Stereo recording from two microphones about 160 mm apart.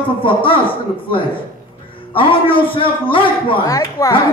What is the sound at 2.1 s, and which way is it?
A man's voice, 35° left (ahead or behind).